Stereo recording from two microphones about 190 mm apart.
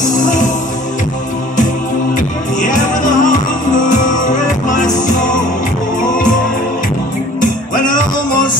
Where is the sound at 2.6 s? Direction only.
40° left (ahead or behind).